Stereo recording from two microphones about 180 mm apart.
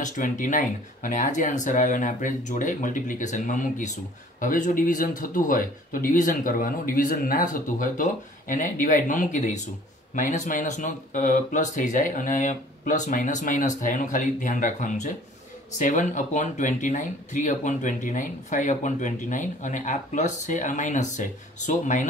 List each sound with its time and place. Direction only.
0.0 s speech: 45° left (ahead or behind)